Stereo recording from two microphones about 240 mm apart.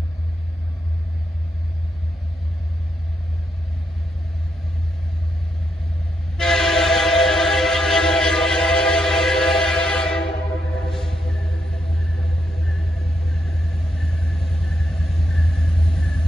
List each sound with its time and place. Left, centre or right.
6.3 s train: centre
10.9 s music: centre
13.3 s vehicle: centre